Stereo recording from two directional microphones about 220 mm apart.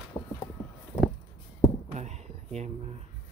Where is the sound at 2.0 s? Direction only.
30° right (ahead or behind).